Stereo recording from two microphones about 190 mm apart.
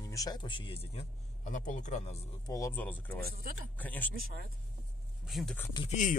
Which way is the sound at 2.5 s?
15° left (ahead or behind).